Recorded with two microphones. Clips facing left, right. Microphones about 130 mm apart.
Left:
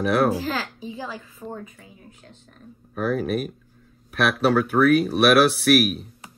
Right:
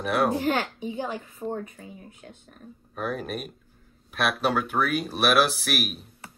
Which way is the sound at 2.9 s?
5° left (ahead or behind).